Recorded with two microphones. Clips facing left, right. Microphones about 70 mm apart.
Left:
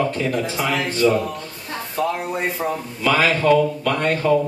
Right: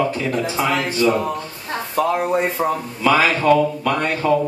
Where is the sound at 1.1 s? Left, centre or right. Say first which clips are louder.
Right 1 dB; right.